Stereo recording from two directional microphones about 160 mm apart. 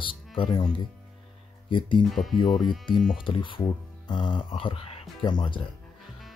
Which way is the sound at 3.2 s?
30° left (ahead or behind).